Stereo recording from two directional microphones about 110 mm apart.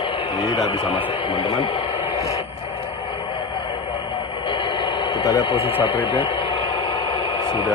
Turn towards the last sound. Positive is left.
turn(degrees=45)  # may be behind; listen again after turning